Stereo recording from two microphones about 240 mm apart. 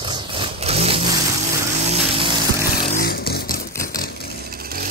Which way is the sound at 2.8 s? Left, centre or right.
Left.